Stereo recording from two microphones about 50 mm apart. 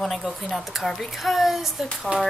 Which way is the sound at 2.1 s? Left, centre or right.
Right.